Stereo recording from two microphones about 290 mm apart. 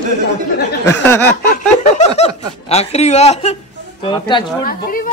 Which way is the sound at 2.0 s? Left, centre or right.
Left.